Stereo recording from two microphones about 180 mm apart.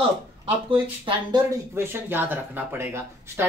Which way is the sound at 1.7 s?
15° right (ahead or behind).